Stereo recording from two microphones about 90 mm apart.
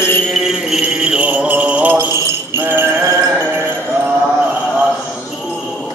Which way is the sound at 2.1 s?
30° right (ahead or behind).